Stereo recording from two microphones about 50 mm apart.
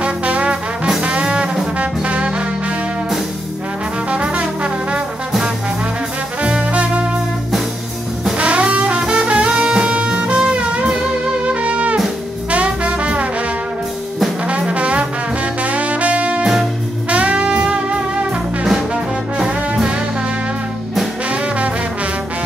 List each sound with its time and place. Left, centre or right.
0.0 s brass instrument: right
1.0 s music: right
1.8 s brass instrument: right
4.1 s brass instrument: right
6.4 s music: right
8.4 s music: right
14.5 s music: right
18.6 s music: centre
19.3 s brass instrument: centre